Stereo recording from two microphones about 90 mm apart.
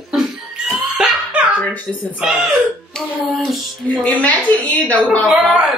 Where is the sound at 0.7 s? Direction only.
5° right (ahead or behind).